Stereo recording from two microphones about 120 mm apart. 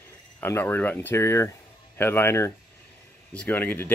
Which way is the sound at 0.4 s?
15° left (ahead or behind).